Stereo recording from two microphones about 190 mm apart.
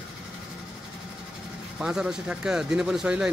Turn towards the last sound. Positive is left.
turn(degrees=-5)  # may be behind; listen again after turning